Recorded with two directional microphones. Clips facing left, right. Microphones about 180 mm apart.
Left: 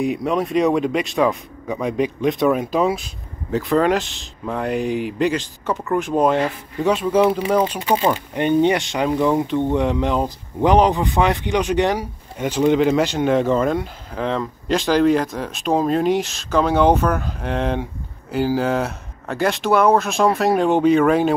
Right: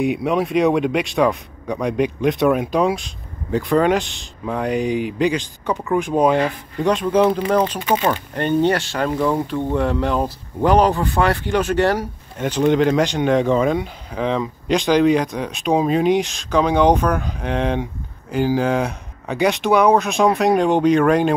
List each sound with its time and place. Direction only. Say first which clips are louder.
0.0 s speech: right 1 dB; centre (ahead or behind); by 9.1 s 15° left (ahead or behind)
9.1 s speech: left 2 dB; 5° left (ahead or behind)
9.8 s speech: even; 20° left (ahead or behind)